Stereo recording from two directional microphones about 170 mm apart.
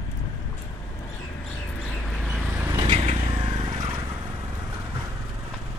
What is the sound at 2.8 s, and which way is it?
Vehicle, 35° right (ahead or behind).